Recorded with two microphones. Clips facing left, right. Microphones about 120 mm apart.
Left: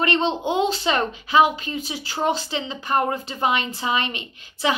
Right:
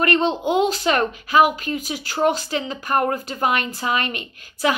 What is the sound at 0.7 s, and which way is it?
Speech, 50° right (ahead or behind).